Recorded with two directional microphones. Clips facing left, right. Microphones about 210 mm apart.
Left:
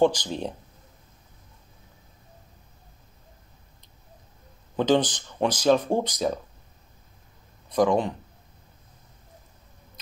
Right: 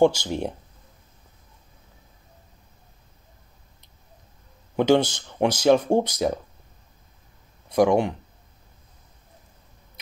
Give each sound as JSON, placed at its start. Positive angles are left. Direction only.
{"t": 0.2, "sound": "speech", "side_deg": -15}
{"t": 4.7, "sound": "speech", "side_deg": -10}
{"t": 7.7, "sound": "speech", "side_deg": -10}